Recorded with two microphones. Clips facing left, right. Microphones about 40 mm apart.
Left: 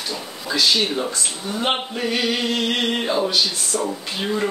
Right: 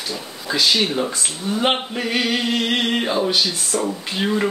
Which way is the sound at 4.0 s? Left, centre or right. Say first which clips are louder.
Right 2 dB; centre.